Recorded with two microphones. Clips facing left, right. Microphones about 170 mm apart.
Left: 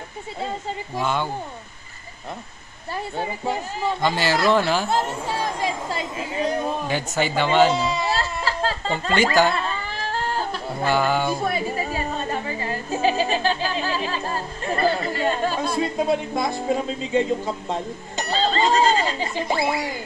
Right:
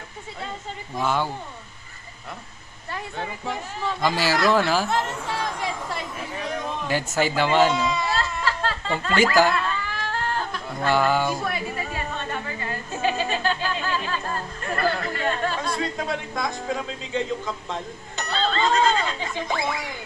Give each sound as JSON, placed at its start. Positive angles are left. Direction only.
{"t": 0.9, "sound": "speech", "side_deg": -5}
{"t": 2.9, "sound": "speech", "side_deg": 35}
{"t": 4.2, "sound": "speech", "side_deg": -5}
{"t": 4.8, "sound": "speech", "side_deg": 30}
{"t": 6.9, "sound": "speech", "side_deg": 0}
{"t": 7.7, "sound": "music", "side_deg": 30}
{"t": 9.5, "sound": "a sound", "side_deg": 30}
{"t": 10.9, "sound": "speech", "side_deg": 0}
{"t": 11.4, "sound": "a sound", "side_deg": 35}
{"t": 15.2, "sound": "speech", "side_deg": 10}
{"t": 16.1, "sound": "speech", "side_deg": 30}
{"t": 18.3, "sound": "a sound", "side_deg": 35}
{"t": 19.3, "sound": "speech", "side_deg": 5}